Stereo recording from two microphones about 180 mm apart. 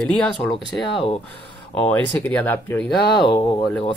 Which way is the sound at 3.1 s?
25° left (ahead or behind).